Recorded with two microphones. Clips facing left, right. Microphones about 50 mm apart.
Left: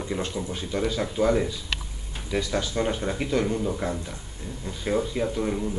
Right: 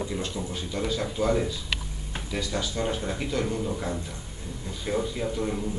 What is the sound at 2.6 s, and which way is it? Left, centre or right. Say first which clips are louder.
Speech: left 1 dB; centre.